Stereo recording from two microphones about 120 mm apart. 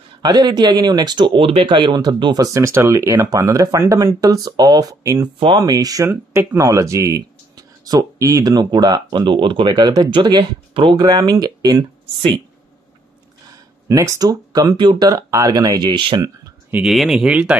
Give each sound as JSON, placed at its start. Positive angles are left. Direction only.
{"t": 0.2, "sound": "speech", "side_deg": -35}
{"t": 11.1, "sound": "speech", "side_deg": -30}
{"t": 13.5, "sound": "speech", "side_deg": -25}
{"t": 16.7, "sound": "speech", "side_deg": 0}